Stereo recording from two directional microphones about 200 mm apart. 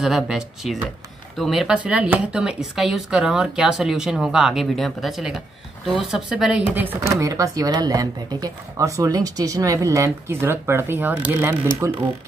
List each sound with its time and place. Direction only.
0.0 s speech: centre (ahead or behind)